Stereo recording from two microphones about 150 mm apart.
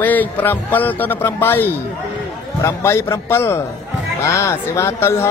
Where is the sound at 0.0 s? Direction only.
10° left (ahead or behind).